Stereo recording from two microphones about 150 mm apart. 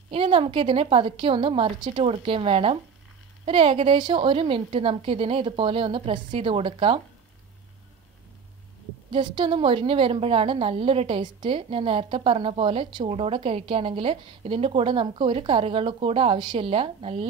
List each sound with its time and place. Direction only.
0.1 s a woman's voice: 35° right (ahead or behind)
9.1 s a woman's voice: 35° right (ahead or behind)